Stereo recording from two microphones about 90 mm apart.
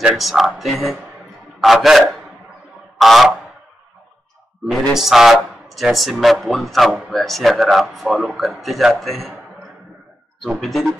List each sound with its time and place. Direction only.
0.0 s speech: 5° right (ahead or behind)
3.0 s a sound: centre (ahead or behind)
4.6 s speech: 5° right (ahead or behind)
10.4 s speech: centre (ahead or behind)